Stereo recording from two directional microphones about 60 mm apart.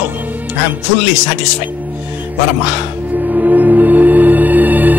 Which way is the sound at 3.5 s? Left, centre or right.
Right.